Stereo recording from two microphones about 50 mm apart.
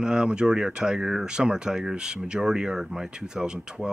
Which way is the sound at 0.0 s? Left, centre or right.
Centre.